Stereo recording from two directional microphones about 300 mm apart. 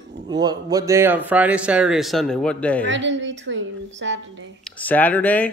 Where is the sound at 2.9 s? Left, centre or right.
Right.